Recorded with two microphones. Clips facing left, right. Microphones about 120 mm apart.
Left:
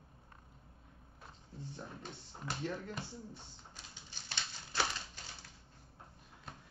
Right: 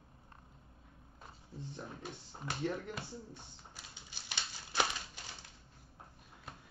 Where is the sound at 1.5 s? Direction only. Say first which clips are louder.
Right 2 dB; 10° right (ahead or behind).